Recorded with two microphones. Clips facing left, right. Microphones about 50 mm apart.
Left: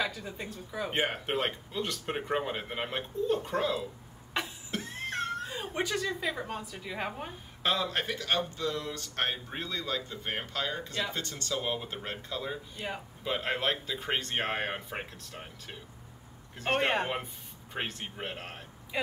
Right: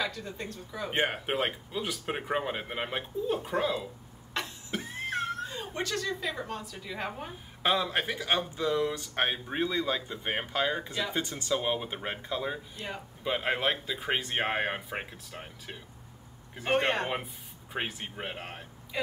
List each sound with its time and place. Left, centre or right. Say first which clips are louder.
0.0 s speech: even; centre
4.6 s a sound: right 2 dB; centre
5.5 s speech: left 1 dB; centre
7.6 s speech: right 2 dB; centre
12.7 s speech: left 1 dB; centre
13.2 s speech: right 2 dB; centre
17.7 s speech: right 1 dB; centre